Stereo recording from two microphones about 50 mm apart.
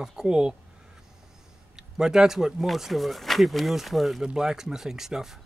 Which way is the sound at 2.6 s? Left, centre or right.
Centre.